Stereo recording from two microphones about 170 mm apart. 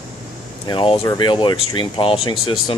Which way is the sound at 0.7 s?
30° left (ahead or behind).